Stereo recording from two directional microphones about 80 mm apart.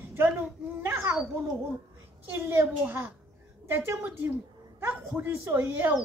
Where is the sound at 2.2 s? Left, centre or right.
Right.